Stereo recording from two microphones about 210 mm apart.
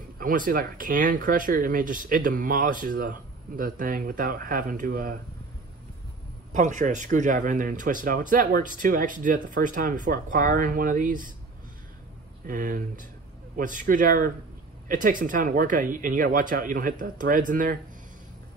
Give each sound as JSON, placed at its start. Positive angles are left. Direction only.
{"t": 0.2, "sound": "speech", "side_deg": -40}
{"t": 6.5, "sound": "speech", "side_deg": -35}
{"t": 12.4, "sound": "speech", "side_deg": -40}